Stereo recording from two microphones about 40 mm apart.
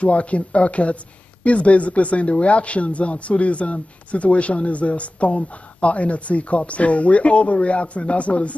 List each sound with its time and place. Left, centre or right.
0.0 s a man's voice: left